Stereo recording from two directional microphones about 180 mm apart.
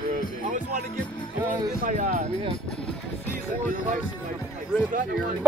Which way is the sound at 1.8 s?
50° right (ahead or behind).